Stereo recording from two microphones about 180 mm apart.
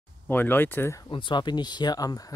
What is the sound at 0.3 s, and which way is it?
Speech, 10° left (ahead or behind).